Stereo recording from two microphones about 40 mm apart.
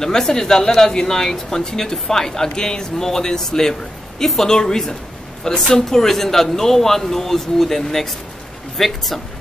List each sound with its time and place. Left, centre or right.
0.0 s speech: centre